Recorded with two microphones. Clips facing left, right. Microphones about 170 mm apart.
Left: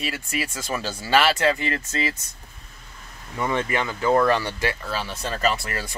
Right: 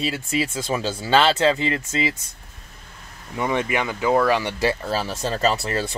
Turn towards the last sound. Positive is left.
turn(degrees=-25)  # may be behind; listen again after turning